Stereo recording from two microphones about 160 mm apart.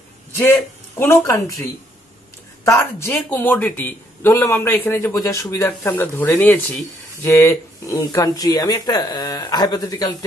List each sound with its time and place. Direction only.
0.4 s a man's voice: 15° left (ahead or behind)